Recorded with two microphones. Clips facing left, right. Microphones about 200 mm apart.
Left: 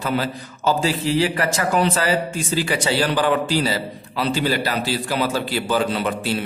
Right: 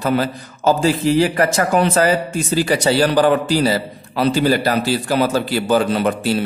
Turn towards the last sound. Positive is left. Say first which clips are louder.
# right 5 dB
turn(degrees=-45)  # may be behind; listen again after turning